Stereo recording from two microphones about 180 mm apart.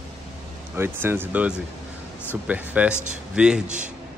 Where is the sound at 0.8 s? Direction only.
10° right (ahead or behind).